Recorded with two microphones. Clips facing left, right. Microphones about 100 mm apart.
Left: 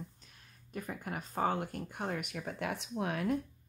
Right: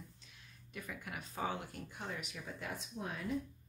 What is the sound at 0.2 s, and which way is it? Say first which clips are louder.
Speech: even; 45° left (ahead or behind).